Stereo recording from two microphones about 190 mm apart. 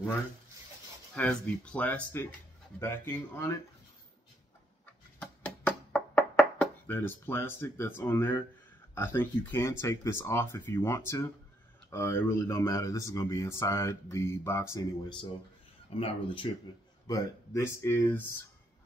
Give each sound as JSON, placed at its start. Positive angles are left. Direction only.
{"t": 1.1, "sound": "speech", "side_deg": 5}
{"t": 5.2, "sound": "knock", "side_deg": 10}
{"t": 8.9, "sound": "speech", "side_deg": 10}
{"t": 17.1, "sound": "speech", "side_deg": 15}